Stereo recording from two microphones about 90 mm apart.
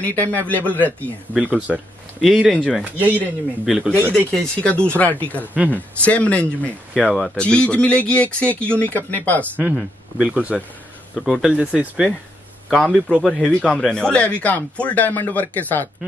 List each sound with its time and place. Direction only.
0.0 s speech: 20° left (ahead or behind)
1.3 s speech: 15° right (ahead or behind)
2.2 s speech: centre (ahead or behind)
2.8 s speech: 15° right (ahead or behind)
4.3 s speech: 10° left (ahead or behind)
5.4 s speech: 20° right (ahead or behind)
5.7 s speech: 15° left (ahead or behind)
6.9 s speech: 5° right (ahead or behind)
7.3 s speech: 10° left (ahead or behind)
9.8 s speech: 10° right (ahead or behind)
11.1 s speech: centre (ahead or behind)
12.6 s a man's voice: centre (ahead or behind); by 15.9 s 20° left (ahead or behind)